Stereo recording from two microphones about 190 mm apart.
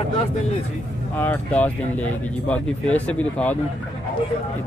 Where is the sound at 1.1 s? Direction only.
10° left (ahead or behind).